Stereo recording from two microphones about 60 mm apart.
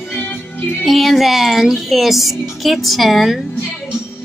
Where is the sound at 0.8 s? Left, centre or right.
Centre.